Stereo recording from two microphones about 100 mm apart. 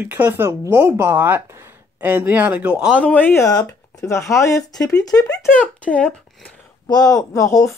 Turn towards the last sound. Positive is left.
turn(degrees=35)  # may be behind; listen again after turning